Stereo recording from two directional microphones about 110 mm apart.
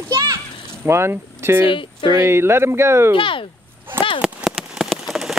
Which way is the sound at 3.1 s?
50° left (ahead or behind).